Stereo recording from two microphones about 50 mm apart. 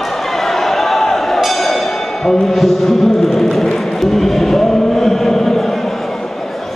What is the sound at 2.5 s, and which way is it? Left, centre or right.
Chant, centre.